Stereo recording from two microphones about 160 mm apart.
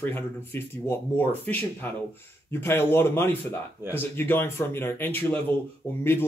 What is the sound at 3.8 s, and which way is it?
Speech, 15° right (ahead or behind).